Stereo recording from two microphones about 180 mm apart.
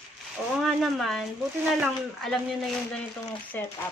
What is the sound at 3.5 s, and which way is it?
Speech, 10° left (ahead or behind).